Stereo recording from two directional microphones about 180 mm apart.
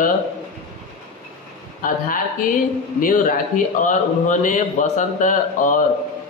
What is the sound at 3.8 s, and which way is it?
A man's voice, 45° left (ahead or behind).